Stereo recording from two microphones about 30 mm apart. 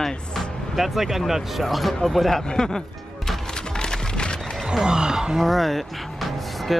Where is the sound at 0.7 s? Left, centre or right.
Centre.